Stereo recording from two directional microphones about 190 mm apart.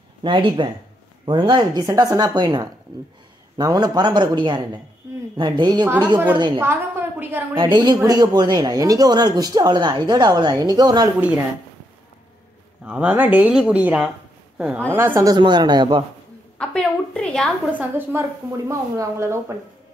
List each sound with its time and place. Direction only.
0.2 s speech: 25° right (ahead or behind)
6.6 s speech: 10° right (ahead or behind)
7.5 s speech: 25° right (ahead or behind)
12.8 s speech: 5° right (ahead or behind); by 16.0 s 25° right (ahead or behind)
16.5 s a sound: 5° left (ahead or behind)
17.7 s speech: 10° right (ahead or behind)